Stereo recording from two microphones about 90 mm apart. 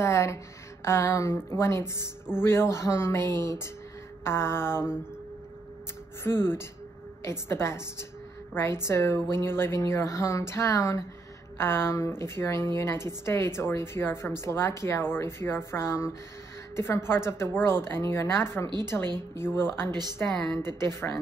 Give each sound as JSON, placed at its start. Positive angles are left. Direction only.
{"t": 0.0, "sound": "a sound", "side_deg": 30}
{"t": 0.8, "sound": "a woman's voice", "side_deg": 30}
{"t": 6.2, "sound": "a woman's voice", "side_deg": 25}
{"t": 18.9, "sound": "a woman's voice", "side_deg": 15}
{"t": 19.3, "sound": "a woman's voice", "side_deg": 25}
{"t": 19.9, "sound": "a woman's voice", "side_deg": -50}
{"t": 20.5, "sound": "a woman's voice", "side_deg": 30}